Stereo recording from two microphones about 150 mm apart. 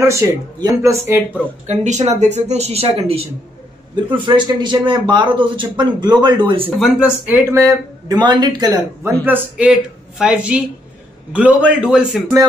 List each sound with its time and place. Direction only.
0.1 s a man's voice: 25° right (ahead or behind)
2.0 s a man's voice: 50° right (ahead or behind)
6.8 s a woman's voice: 10° right (ahead or behind)
7.6 s a man's voice: 30° right (ahead or behind)
9.2 s a woman's voice: 10° right (ahead or behind)